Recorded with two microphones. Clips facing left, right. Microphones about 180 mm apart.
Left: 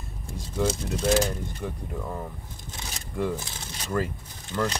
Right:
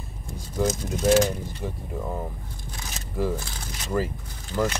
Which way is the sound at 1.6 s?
5° right (ahead or behind).